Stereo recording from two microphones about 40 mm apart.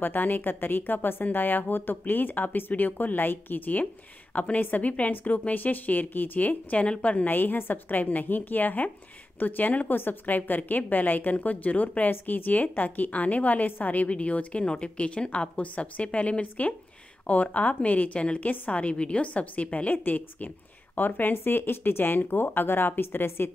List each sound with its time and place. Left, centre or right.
0.0 s speech: left
3.8 s a woman's voice: left
7.2 s a woman's voice: left
20.0 s speech: left